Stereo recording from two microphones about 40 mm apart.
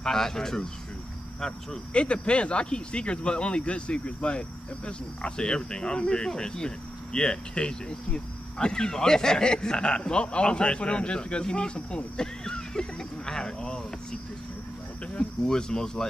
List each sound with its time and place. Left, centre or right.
0.0 s speech: centre
2.0 s speech: left
15.4 s speech: centre